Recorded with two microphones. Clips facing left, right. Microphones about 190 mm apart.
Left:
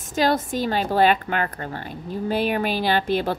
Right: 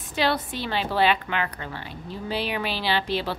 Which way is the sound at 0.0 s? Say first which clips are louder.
Left 4 dB; 45° left (ahead or behind).